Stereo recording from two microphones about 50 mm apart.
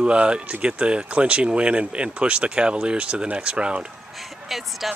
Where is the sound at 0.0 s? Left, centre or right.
Right.